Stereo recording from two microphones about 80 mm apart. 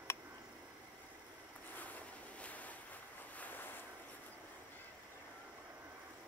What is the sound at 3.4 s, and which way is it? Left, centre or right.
Waves, left.